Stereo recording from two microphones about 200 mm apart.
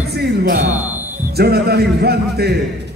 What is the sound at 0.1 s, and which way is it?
Music, 55° right (ahead or behind).